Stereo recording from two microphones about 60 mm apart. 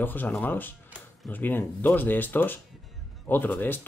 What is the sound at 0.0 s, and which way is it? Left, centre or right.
Speech, left.